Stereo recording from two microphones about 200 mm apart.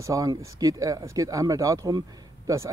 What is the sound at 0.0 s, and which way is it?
Speech, 15° right (ahead or behind).